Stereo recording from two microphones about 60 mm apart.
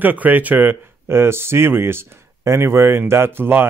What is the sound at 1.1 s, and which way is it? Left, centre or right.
Speech, right.